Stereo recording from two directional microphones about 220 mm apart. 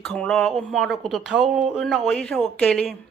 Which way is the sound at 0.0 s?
5° left (ahead or behind).